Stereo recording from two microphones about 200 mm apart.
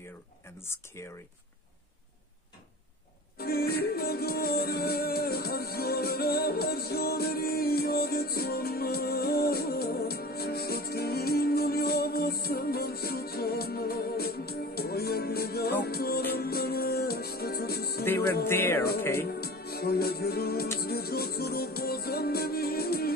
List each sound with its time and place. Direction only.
0.6 s speech: 10° left (ahead or behind)
3.3 s music: 50° left (ahead or behind)
18.5 s speech: 10° left (ahead or behind)
19.1 s speech: 50° left (ahead or behind)
20.8 s music: 50° left (ahead or behind)